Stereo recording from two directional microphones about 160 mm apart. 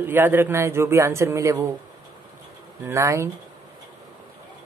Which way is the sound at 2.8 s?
20° right (ahead or behind).